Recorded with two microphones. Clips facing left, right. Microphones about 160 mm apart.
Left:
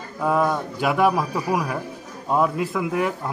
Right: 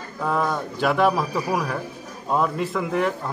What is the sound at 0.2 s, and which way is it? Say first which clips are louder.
A man's voice: left 3 dB; 5° left (ahead or behind).